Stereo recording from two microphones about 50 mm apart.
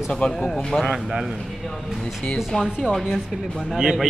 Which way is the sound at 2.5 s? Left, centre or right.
Centre.